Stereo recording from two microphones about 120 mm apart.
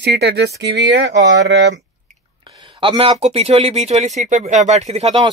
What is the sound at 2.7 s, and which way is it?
Speech, 50° right (ahead or behind).